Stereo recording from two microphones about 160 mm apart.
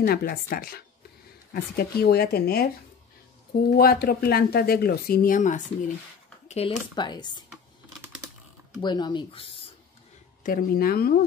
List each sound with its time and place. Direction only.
0.0 s speech: 75° left (ahead or behind)
3.7 s speech: 70° left (ahead or behind); by 5.6 s 55° left (ahead or behind)
6.4 s a sound: 40° left (ahead or behind)
7.0 s speech: 25° left (ahead or behind)
8.8 s speech: 25° left (ahead or behind)
10.4 s speech: 65° left (ahead or behind)